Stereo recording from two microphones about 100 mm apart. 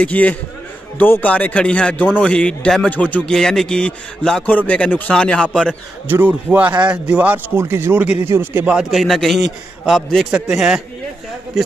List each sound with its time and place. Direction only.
0.0 s a man's voice: 15° left (ahead or behind)
6.0 s speech: 20° right (ahead or behind)
8.7 s a man's voice: centre (ahead or behind)